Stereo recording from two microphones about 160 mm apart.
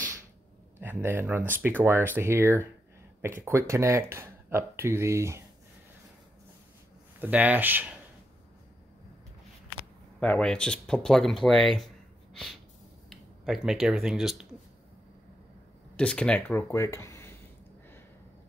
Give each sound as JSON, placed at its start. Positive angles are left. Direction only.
{"t": 0.7, "sound": "speech", "side_deg": -15}
{"t": 7.2, "sound": "speech", "side_deg": -10}
{"t": 10.2, "sound": "speech", "side_deg": 5}
{"t": 13.1, "sound": "speech", "side_deg": 0}
{"t": 16.0, "sound": "speech", "side_deg": 5}